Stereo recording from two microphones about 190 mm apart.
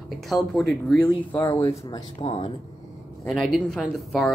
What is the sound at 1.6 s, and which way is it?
Speech, 30° left (ahead or behind).